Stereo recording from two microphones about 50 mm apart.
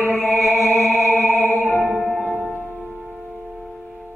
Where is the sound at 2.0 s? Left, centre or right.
Centre.